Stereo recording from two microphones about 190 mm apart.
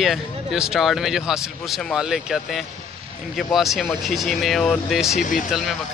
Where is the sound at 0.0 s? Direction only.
Centre (ahead or behind).